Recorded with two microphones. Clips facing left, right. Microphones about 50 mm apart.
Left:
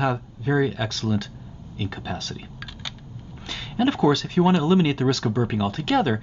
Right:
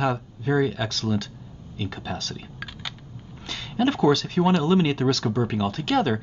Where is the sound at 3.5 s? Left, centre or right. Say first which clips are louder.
Left 1 dB; centre.